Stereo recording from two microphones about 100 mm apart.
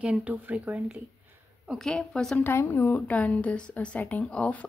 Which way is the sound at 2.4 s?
25° left (ahead or behind).